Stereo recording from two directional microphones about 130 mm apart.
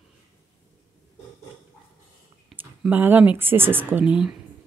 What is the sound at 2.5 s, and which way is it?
Speech, 15° right (ahead or behind).